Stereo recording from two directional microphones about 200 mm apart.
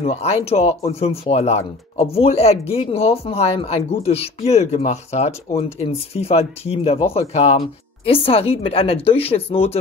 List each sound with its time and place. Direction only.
0.0 s speech: 30° left (ahead or behind)